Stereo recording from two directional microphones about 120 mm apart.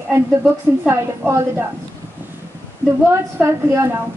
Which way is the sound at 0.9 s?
20° right (ahead or behind).